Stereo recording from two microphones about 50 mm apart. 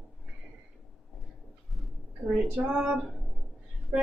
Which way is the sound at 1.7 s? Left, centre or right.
Centre.